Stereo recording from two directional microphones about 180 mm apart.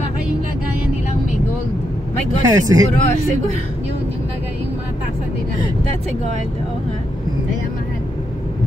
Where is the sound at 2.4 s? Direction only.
20° right (ahead or behind).